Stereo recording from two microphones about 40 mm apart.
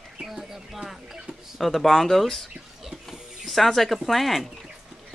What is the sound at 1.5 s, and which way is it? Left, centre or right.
Speech, centre.